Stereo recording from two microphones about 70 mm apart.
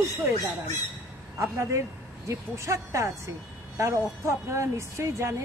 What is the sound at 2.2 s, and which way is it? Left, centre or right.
Speech, right.